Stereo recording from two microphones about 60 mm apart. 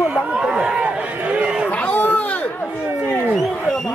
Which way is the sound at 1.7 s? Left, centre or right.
Left.